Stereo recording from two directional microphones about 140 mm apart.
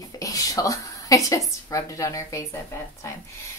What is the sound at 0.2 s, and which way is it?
Speech, 25° left (ahead or behind).